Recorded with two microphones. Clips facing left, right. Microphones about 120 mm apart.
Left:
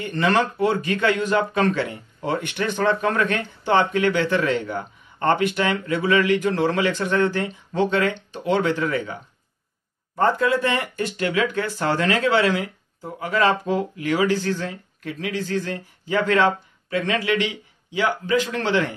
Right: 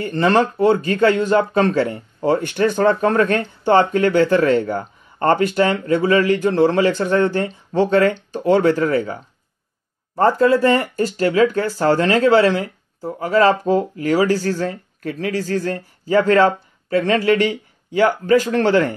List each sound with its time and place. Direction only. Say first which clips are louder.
0.0 s speech: right 4 dB; 35° right (ahead or behind)